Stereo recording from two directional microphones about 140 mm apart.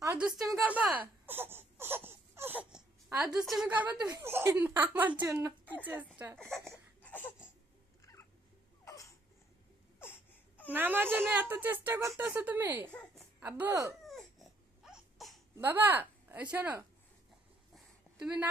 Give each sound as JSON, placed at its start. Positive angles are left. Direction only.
{"t": 0.2, "sound": "crying", "side_deg": 0}
{"t": 3.3, "sound": "speech", "side_deg": -5}
{"t": 6.5, "sound": "speech", "side_deg": 5}
{"t": 7.0, "sound": "a sound", "side_deg": 15}
{"t": 8.0, "sound": "cat", "side_deg": 20}
{"t": 8.8, "sound": "a sound", "side_deg": 25}
{"t": 10.7, "sound": "speech", "side_deg": -15}
{"t": 14.8, "sound": "crying", "side_deg": 0}
{"t": 15.5, "sound": "speech", "side_deg": -15}
{"t": 17.7, "sound": "a sound", "side_deg": -10}